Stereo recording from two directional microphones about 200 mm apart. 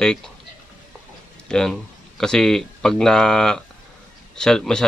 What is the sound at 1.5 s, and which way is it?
Speech, 5° left (ahead or behind).